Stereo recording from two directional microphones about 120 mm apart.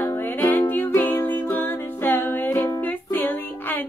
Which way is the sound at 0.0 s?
15° left (ahead or behind).